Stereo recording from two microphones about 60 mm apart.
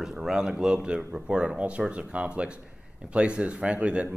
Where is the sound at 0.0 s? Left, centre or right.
Centre.